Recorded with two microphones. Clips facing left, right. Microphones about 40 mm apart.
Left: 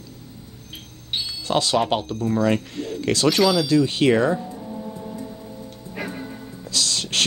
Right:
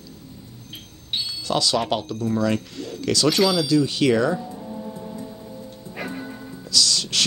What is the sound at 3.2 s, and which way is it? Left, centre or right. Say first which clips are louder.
Speech: left 1 dB; centre.